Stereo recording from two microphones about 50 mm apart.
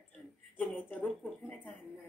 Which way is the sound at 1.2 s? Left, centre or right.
Left.